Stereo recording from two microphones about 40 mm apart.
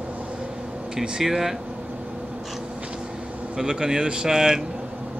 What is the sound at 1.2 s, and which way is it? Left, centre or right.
Speech, centre.